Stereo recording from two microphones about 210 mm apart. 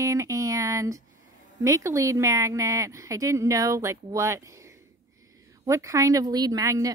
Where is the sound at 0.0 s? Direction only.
15° right (ahead or behind).